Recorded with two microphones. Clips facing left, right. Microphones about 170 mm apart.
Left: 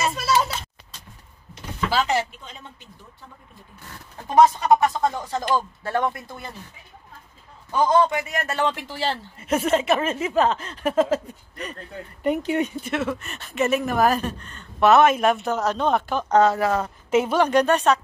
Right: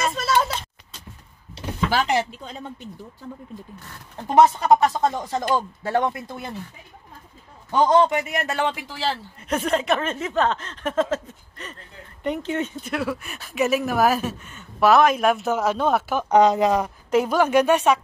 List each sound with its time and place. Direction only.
0.0 s a sound: 5° left (ahead or behind)
4.4 s speech: 20° right (ahead or behind)
7.9 s speech: 20° right (ahead or behind)
9.4 s speech: 5° left (ahead or behind)
12.9 s speech: centre (ahead or behind); by 16.9 s 15° right (ahead or behind)
17.1 s speech: centre (ahead or behind)